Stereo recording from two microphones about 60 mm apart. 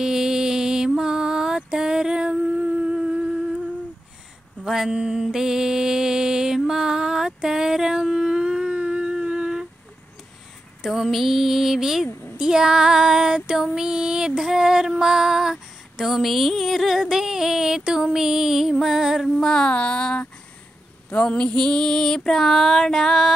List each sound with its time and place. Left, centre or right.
0.0 s music: centre
4.6 s speech: centre
4.9 s mantra: centre
6.6 s a sound: centre
9.2 s humming: centre
10.8 s speech: centre
12.4 s child singing: centre
13.7 s music: centre
19.3 s music: centre